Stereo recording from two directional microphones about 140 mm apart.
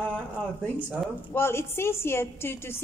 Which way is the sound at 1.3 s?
15° left (ahead or behind).